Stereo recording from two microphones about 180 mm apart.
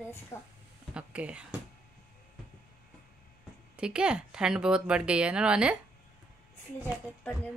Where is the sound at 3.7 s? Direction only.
5° right (ahead or behind).